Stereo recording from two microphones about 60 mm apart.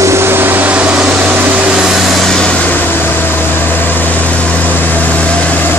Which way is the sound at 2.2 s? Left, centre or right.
Centre.